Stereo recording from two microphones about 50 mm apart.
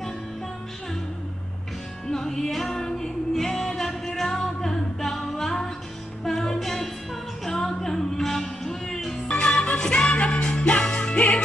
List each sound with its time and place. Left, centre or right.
2.0 s music: centre
9.3 s music: left